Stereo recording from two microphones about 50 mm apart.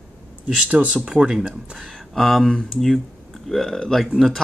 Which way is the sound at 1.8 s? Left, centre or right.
Centre.